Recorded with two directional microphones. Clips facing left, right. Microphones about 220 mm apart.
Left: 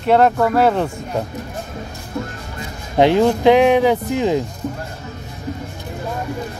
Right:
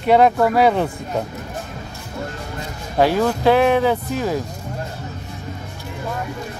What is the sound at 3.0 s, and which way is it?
Speech, 20° left (ahead or behind).